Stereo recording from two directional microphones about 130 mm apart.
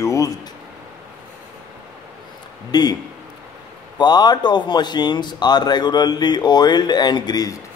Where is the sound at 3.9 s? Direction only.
35° left (ahead or behind).